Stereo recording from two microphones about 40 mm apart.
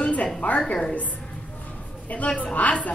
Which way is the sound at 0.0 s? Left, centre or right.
Left.